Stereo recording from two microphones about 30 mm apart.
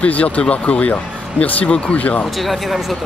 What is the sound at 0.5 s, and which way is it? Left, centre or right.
Speech, left.